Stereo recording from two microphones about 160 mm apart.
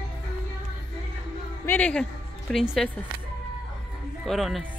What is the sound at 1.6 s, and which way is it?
A woman's voice, 10° left (ahead or behind).